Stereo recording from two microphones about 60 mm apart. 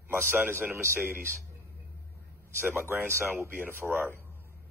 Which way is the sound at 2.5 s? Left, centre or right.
Right.